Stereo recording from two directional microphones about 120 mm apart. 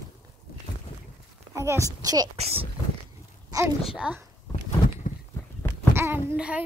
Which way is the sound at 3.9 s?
10° right (ahead or behind).